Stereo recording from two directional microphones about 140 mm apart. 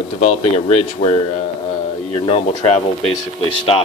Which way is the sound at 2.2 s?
40° left (ahead or behind).